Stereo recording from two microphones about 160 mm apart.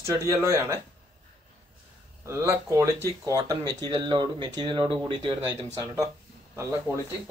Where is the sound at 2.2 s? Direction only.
15° right (ahead or behind).